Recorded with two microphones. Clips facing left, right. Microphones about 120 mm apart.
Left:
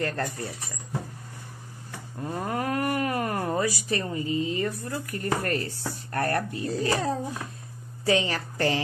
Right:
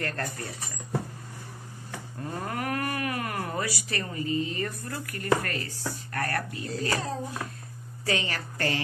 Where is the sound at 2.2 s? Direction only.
20° left (ahead or behind).